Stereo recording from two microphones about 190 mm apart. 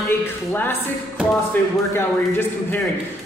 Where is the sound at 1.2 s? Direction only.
5° right (ahead or behind).